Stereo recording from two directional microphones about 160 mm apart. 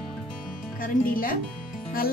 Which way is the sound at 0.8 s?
60° left (ahead or behind).